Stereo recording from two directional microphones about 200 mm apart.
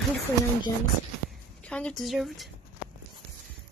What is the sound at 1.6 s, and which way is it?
Speech, 5° left (ahead or behind).